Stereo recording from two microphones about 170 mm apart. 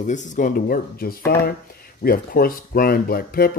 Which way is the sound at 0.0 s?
45° left (ahead or behind).